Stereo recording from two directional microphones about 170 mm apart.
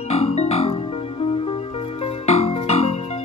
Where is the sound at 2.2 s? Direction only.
40° left (ahead or behind).